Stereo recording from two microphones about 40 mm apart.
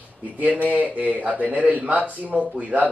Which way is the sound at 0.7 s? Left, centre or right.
Right.